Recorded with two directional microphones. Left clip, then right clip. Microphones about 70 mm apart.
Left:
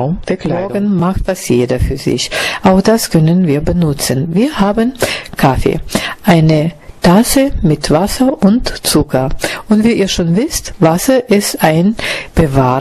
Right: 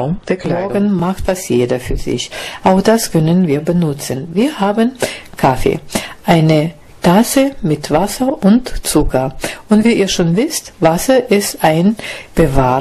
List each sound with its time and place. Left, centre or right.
0.3 s speech: left